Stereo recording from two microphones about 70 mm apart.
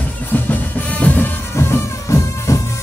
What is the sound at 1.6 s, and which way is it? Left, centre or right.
Music, left.